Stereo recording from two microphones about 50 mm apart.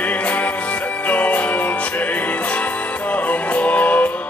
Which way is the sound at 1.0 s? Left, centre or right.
Left.